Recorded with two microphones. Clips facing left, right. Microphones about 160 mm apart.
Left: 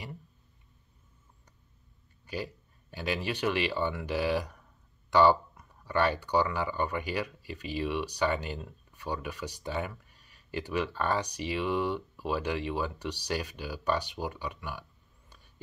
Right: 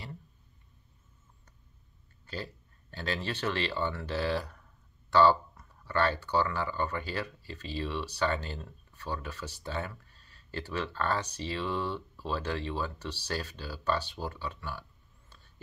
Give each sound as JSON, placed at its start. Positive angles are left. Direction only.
{"t": 2.2, "sound": "speech", "side_deg": 15}